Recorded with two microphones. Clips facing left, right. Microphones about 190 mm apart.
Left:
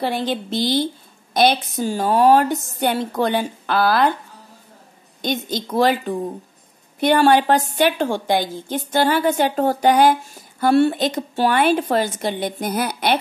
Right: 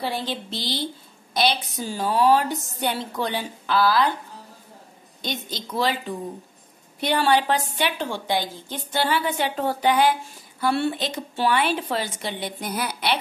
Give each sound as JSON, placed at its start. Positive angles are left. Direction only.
{"t": 0.0, "sound": "a woman's voice", "side_deg": 50}
{"t": 5.2, "sound": "a woman's voice", "side_deg": 50}